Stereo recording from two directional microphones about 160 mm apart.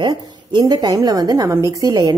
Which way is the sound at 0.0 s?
25° right (ahead or behind).